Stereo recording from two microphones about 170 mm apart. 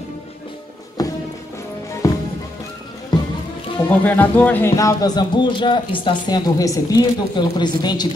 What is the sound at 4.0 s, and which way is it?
A man's voice, 10° left (ahead or behind).